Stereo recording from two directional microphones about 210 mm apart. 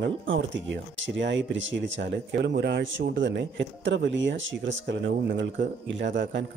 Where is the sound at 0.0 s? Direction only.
60° right (ahead or behind).